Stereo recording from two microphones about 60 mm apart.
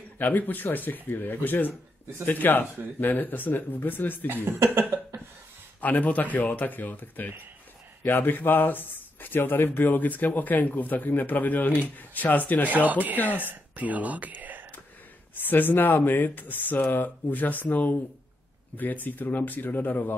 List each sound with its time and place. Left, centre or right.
0.2 s speech: left
4.7 s a sound: right
5.8 s speech: left
12.6 s speech: right
15.4 s speech: left